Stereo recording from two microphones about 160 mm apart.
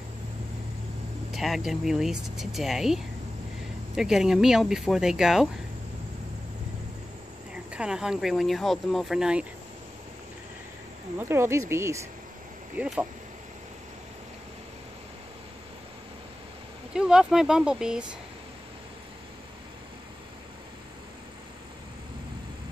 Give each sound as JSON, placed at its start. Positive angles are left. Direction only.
{"t": 1.3, "sound": "speech", "side_deg": 0}
{"t": 7.5, "sound": "speech", "side_deg": -5}
{"t": 11.1, "sound": "speech", "side_deg": -15}
{"t": 12.7, "sound": "speech", "side_deg": -5}
{"t": 16.9, "sound": "speech", "side_deg": -5}